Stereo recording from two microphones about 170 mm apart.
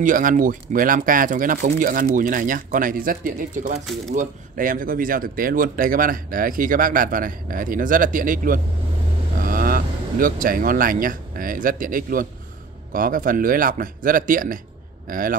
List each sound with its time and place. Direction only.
0.0 s speech: 55° right (ahead or behind)